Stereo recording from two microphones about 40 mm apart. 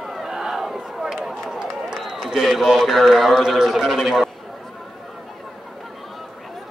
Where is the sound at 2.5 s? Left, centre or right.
Centre.